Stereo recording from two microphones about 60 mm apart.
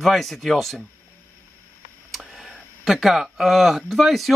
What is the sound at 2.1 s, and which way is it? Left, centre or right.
Speech, centre.